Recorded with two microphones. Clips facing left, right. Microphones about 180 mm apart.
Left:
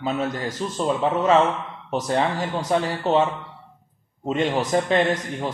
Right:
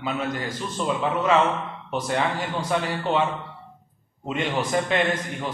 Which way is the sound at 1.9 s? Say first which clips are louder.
Left 3 dB; 35° left (ahead or behind).